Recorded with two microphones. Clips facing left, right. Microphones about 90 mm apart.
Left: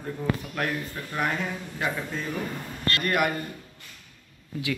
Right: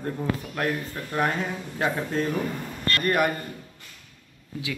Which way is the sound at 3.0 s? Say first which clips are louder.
Right 2 dB; 35° right (ahead or behind).